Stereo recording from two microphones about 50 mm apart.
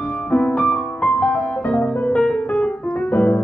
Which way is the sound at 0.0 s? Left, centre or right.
Left.